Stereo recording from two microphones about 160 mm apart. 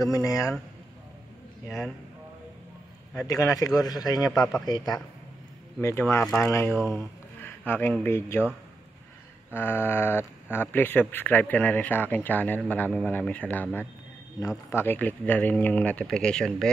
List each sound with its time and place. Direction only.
0.0 s a man's voice: 20° left (ahead or behind)
3.3 s a man's voice: 20° left (ahead or behind)
6.7 s speech: centre (ahead or behind)
7.3 s a man's voice: 10° left (ahead or behind)
9.5 s speech: 10° left (ahead or behind)
14.7 s speech: 15° left (ahead or behind)